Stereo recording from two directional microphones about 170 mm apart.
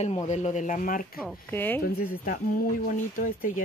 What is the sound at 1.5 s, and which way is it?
Speech, 10° left (ahead or behind).